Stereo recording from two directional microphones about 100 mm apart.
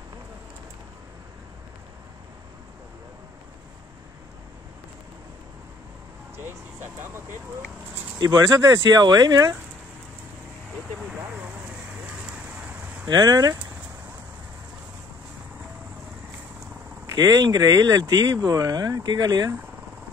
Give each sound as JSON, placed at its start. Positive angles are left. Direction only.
{"t": 6.3, "sound": "vehicle", "side_deg": -25}
{"t": 8.2, "sound": "speech", "side_deg": -40}
{"t": 12.1, "sound": "vehicle", "side_deg": -10}
{"t": 13.1, "sound": "speech", "side_deg": -40}
{"t": 17.0, "sound": "speech", "side_deg": -35}